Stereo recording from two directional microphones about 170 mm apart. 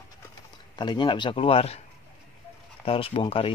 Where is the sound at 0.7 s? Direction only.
25° left (ahead or behind).